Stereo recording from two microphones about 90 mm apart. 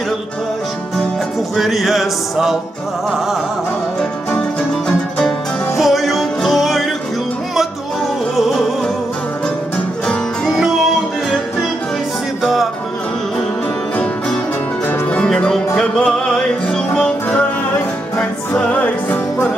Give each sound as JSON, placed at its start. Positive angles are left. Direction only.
{"t": 1.6, "sound": "music", "side_deg": 0}
{"t": 5.8, "sound": "music", "side_deg": 0}
{"t": 8.4, "sound": "music", "side_deg": 0}
{"t": 15.2, "sound": "music", "side_deg": 10}